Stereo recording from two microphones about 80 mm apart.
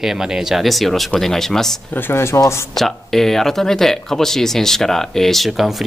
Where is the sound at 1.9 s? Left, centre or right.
Left.